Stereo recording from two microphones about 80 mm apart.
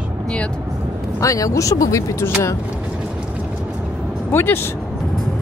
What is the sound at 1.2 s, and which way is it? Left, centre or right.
Speech, left.